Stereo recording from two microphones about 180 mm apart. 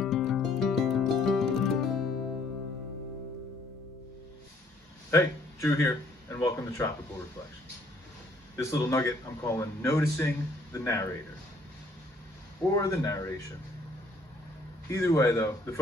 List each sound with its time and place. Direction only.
0.0 s music: centre (ahead or behind)
5.1 s speech: 15° left (ahead or behind)
8.6 s speech: 15° left (ahead or behind)
12.7 s speech: 20° left (ahead or behind)
14.9 s speech: 15° left (ahead or behind)